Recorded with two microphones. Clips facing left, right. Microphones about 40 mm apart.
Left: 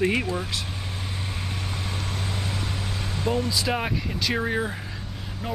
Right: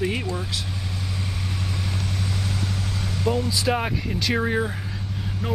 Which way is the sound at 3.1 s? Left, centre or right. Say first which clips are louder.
Right 2 dB; left.